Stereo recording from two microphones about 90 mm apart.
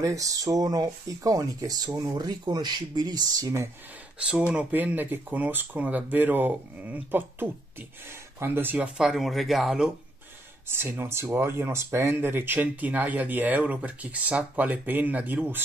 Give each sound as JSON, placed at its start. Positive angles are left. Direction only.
{"t": 0.0, "sound": "speech", "side_deg": -40}
{"t": 4.2, "sound": "speech", "side_deg": -15}
{"t": 9.0, "sound": "speech", "side_deg": 0}
{"t": 10.7, "sound": "speech", "side_deg": -25}